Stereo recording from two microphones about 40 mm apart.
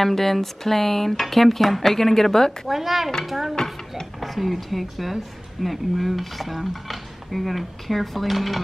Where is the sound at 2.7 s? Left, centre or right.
Centre.